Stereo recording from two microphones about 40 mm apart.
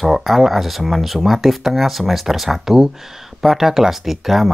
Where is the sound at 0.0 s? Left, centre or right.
Centre.